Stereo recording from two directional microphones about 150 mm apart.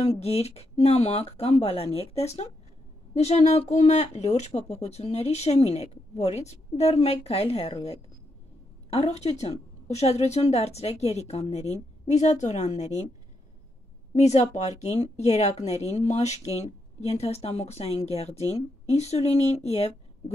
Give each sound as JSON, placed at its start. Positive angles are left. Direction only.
{"t": 0.0, "sound": "speech", "side_deg": 40}
{"t": 14.1, "sound": "speech", "side_deg": 50}